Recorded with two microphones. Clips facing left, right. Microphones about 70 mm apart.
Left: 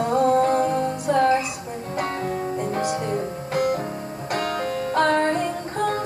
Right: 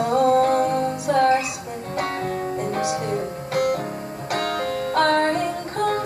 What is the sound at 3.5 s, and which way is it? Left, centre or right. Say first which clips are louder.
Music: right 1 dB; right.